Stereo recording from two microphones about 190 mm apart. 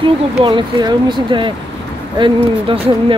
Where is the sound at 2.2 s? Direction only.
25° right (ahead or behind).